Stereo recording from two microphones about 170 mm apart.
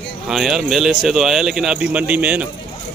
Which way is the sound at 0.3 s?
Centre (ahead or behind).